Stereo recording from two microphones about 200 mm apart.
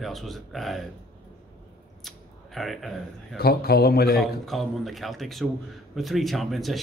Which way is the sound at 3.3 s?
50° left (ahead or behind).